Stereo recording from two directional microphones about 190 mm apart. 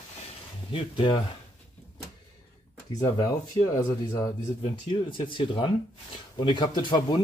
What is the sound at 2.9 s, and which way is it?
Speech, 20° left (ahead or behind).